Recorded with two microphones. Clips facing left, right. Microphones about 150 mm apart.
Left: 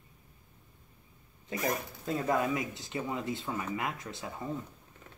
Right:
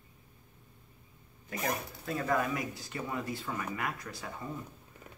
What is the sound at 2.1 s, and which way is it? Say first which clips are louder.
Speech: left 2 dB; 20° left (ahead or behind).